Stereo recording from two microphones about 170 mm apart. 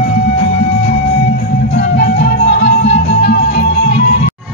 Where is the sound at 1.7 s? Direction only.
90° left.